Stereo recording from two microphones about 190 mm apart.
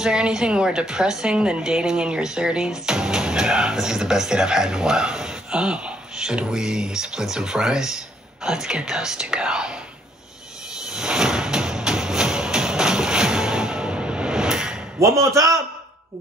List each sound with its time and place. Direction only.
0.0 s a woman's voice: 5° right (ahead or behind)
10.9 s music: 5° right (ahead or behind)
15.0 s a man's voice: 15° right (ahead or behind)